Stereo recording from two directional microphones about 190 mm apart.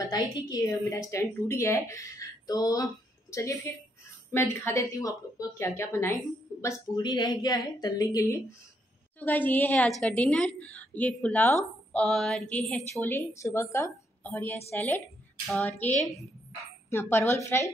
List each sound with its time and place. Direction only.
0.0 s a woman's voice: 20° left (ahead or behind); by 13.1 s centre (ahead or behind)
13.3 s a woman's voice: 15° left (ahead or behind)